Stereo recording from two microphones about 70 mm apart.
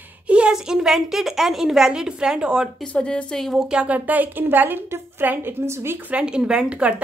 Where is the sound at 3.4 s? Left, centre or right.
Centre.